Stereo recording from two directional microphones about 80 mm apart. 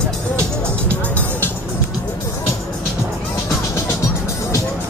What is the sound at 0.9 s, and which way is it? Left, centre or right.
Music, centre.